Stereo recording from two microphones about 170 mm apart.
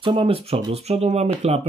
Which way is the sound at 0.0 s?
30° right (ahead or behind).